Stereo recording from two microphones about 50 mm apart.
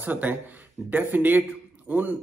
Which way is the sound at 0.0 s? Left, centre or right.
Right.